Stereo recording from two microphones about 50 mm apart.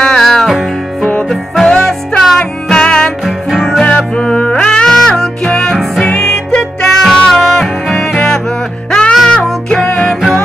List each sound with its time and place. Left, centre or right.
0.0 s music: centre
3.3 s music: centre
3.8 s music: centre
8.1 s music: centre